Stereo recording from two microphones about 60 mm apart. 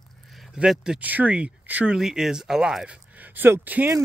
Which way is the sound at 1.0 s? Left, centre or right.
Right.